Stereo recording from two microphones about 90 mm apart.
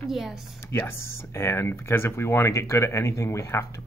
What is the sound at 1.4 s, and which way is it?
Speech, 30° left (ahead or behind).